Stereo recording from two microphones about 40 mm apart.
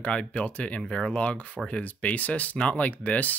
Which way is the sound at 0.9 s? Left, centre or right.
Left.